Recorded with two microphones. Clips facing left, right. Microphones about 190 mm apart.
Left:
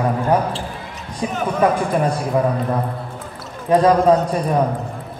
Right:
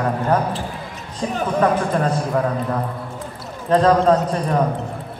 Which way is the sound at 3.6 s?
10° left (ahead or behind).